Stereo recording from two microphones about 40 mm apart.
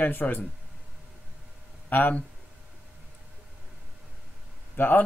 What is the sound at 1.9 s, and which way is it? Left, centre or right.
Speech, left.